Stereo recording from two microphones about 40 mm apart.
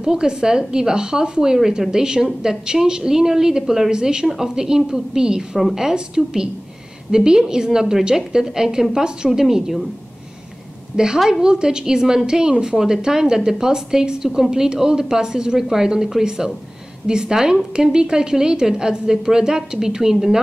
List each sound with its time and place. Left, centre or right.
0.0 s a woman's voice: centre
11.4 s a woman's voice: centre